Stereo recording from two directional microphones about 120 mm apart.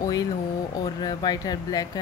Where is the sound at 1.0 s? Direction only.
35° left (ahead or behind).